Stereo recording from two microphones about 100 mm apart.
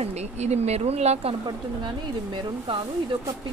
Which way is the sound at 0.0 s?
90° right.